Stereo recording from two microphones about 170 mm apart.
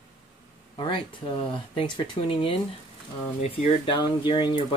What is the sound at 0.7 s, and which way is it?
Speech, 30° left (ahead or behind).